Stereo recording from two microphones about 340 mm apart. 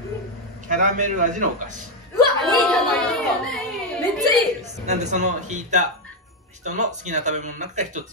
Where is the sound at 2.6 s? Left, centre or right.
Centre.